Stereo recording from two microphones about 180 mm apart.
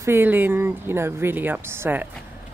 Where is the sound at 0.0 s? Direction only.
10° right (ahead or behind).